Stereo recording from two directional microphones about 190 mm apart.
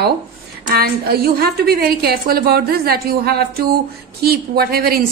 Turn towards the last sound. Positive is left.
turn(degrees=-50)  # may be behind; listen again after turning